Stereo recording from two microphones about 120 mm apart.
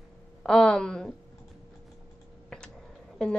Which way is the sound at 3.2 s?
5° left (ahead or behind).